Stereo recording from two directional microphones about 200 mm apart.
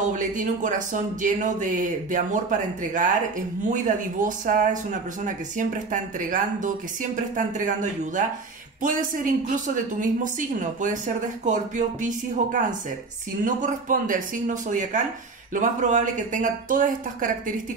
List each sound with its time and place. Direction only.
0.1 s speech: 40° right (ahead or behind)